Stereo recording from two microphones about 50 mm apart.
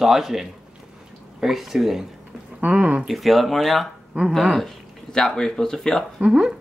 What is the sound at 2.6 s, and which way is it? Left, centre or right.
Speech, right.